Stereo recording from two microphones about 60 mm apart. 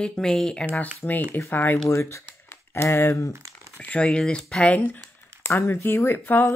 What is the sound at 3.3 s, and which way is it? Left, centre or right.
Crumpling, right.